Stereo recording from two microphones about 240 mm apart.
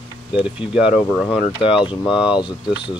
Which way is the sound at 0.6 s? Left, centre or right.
Centre.